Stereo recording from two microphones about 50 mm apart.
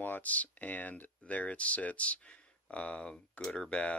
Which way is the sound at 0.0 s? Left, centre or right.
Left.